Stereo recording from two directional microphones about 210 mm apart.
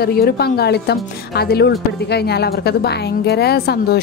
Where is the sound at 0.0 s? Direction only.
45° left (ahead or behind).